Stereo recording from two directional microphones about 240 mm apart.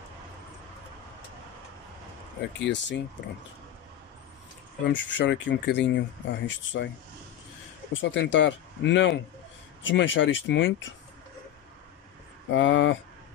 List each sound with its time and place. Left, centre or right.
2.6 s speech: left
4.8 s speech: left
7.9 s speech: left
12.5 s speech: left